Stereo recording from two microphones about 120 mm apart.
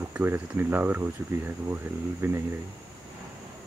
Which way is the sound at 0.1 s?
20° right (ahead or behind).